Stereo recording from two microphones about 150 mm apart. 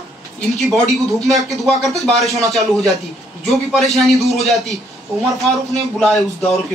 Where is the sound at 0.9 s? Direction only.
Centre (ahead or behind).